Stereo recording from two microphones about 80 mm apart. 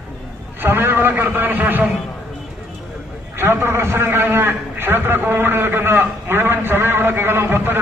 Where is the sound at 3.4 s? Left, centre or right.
Right.